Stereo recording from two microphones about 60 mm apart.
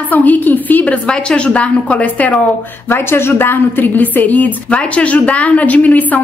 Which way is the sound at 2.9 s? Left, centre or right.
Left.